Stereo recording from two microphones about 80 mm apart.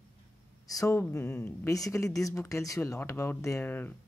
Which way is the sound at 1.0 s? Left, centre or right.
Left.